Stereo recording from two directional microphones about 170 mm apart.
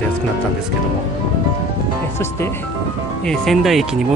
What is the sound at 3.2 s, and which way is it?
Speech, centre (ahead or behind).